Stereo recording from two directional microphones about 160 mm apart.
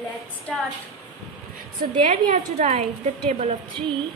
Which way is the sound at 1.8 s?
55° right (ahead or behind).